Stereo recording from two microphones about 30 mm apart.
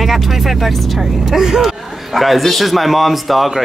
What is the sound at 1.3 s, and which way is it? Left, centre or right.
Speech, centre.